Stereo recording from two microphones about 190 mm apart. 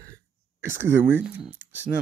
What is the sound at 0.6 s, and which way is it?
Speech, 10° right (ahead or behind).